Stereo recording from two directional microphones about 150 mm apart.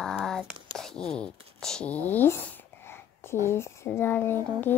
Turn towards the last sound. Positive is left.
turn(degrees=15)  # may be behind; listen again after turning